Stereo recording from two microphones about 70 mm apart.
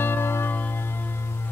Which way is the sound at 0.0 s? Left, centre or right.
Left.